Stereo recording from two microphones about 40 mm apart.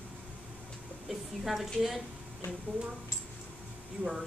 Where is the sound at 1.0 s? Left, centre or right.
Centre.